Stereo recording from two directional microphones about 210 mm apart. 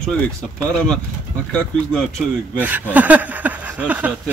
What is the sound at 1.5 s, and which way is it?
Speech, 5° left (ahead or behind).